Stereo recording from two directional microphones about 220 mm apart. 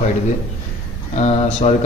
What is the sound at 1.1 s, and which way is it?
Speech, 30° left (ahead or behind).